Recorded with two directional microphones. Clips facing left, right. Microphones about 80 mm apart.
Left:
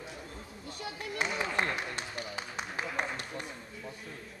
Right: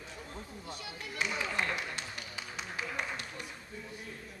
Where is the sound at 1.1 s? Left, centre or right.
Left.